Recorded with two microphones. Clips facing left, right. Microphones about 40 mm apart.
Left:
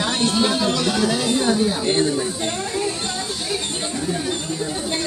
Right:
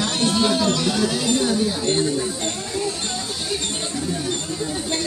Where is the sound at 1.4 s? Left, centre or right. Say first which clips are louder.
Left 2 dB; left.